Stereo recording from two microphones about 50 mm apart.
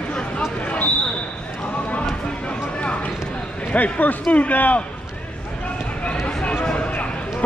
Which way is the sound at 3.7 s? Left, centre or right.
Left.